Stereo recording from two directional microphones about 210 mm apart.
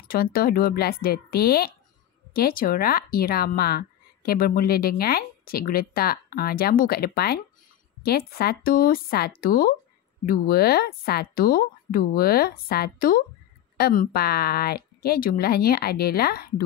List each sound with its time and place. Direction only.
0.1 s speech: 45° left (ahead or behind)